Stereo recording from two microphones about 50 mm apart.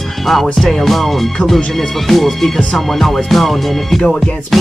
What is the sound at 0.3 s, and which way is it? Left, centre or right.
Music, centre.